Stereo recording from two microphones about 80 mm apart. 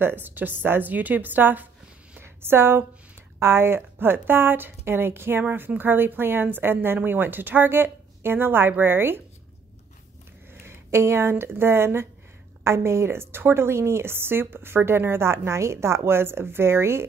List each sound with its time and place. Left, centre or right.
0.0 s speech: right
2.1 s a sound: right
3.3 s speech: right
5.4 s speech: centre
10.5 s a woman's voice: right